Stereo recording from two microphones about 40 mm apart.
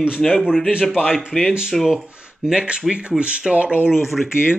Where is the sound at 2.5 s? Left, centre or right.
Right.